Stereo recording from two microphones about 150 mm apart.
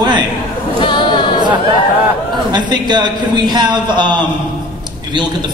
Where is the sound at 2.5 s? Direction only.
30° right (ahead or behind).